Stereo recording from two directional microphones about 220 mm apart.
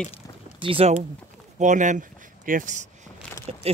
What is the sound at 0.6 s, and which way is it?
Speech, 25° right (ahead or behind).